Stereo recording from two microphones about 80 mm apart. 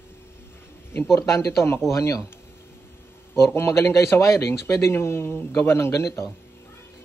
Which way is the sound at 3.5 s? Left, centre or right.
Left.